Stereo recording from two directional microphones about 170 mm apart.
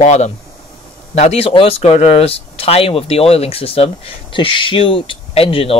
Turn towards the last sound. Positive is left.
turn(degrees=35)  # may be behind; listen again after turning